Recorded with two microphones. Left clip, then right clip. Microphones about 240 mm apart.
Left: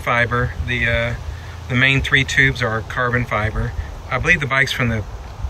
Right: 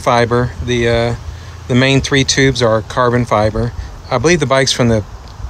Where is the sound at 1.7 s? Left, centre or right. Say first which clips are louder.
Right 3 dB; centre.